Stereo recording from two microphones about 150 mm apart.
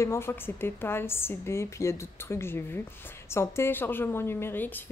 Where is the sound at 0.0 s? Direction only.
15° left (ahead or behind).